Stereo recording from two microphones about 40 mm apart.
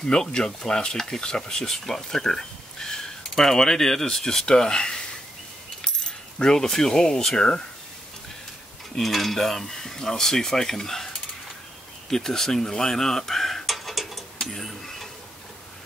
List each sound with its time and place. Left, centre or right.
0.0 s speech: centre
6.4 s speech: centre
8.9 s speech: centre
12.1 s stir: centre